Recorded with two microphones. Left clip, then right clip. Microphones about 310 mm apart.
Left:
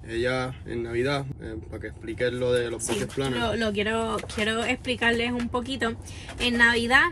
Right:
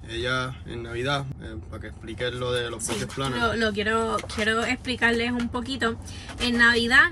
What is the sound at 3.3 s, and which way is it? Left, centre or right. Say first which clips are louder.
Speech: right 3 dB; left.